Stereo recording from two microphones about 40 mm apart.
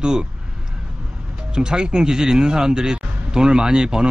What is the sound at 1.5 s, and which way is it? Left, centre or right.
Speech, centre.